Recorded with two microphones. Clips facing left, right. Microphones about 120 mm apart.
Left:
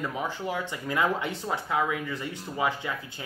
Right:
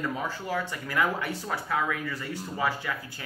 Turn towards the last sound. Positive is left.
turn(degrees=20)  # may be behind; listen again after turning